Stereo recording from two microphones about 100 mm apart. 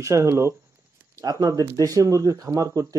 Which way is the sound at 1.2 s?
40° right (ahead or behind).